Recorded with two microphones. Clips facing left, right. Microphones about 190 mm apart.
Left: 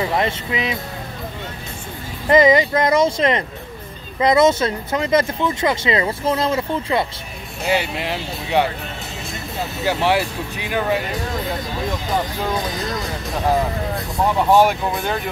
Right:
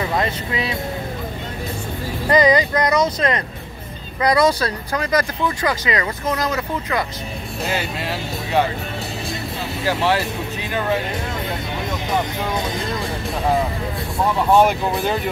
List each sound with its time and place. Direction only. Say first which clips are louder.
0.0 s speech: left 1 dB; 20° left (ahead or behind)
2.2 s speech: left 2 dB; 20° left (ahead or behind)
7.7 s speech: left 5 dB; 15° left (ahead or behind)
9.8 s speech: left 1 dB; 15° left (ahead or behind)
12.5 s speech: even; 25° right (ahead or behind)
14.5 s speech: right 1 dB; centre (ahead or behind)